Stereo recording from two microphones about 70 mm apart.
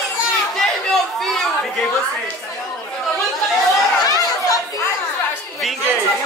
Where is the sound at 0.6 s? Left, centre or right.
Centre.